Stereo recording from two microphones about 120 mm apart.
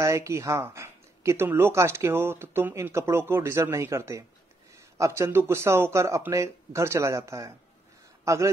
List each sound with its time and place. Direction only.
0.0 s speech: 25° right (ahead or behind)